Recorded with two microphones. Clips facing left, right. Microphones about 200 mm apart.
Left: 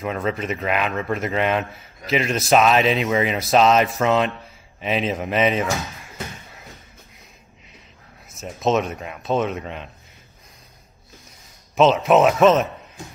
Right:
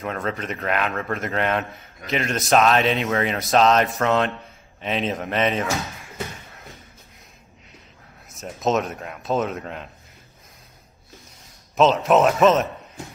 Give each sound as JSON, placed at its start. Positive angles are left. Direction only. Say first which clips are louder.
{"t": 0.0, "sound": "a man's voice", "louder": "left 3 dB", "side_deg": 0}
{"t": 8.4, "sound": "a man's voice", "louder": "left 2 dB", "side_deg": 0}
{"t": 11.7, "sound": "a man's voice", "louder": "left 2 dB", "side_deg": 0}